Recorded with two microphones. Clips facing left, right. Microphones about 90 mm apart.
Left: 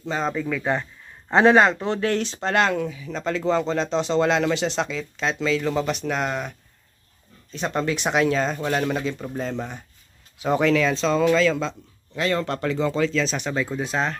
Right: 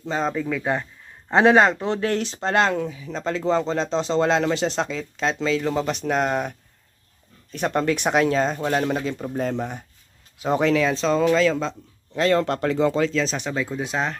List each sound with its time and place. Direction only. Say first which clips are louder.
0.3 s speech: even; 15° right (ahead or behind); by 6.5 s 45° right (ahead or behind)
7.5 s speech: right 3 dB; 55° right (ahead or behind)
10.4 s speech: even; 35° right (ahead or behind)
10.7 s a man's voice: even; 15° right (ahead or behind)
12.2 s speech: right 4 dB; 60° right (ahead or behind)
12.6 s speech: left 1 dB; 45° right (ahead or behind)
13.1 s a man's voice: even; 25° right (ahead or behind)
13.5 s speech: left 1 dB; centre (ahead or behind)
13.7 s speech: left 1 dB; 10° right (ahead or behind)